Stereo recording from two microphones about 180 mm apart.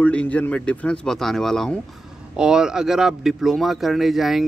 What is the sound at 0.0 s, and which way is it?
Speech, 5° left (ahead or behind).